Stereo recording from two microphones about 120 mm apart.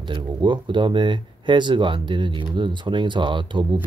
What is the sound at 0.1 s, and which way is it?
Speech, 40° right (ahead or behind).